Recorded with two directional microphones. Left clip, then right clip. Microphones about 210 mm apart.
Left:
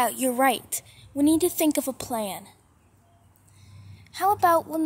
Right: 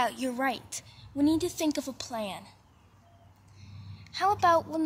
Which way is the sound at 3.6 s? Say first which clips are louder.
Right 1 dB; 15° left (ahead or behind).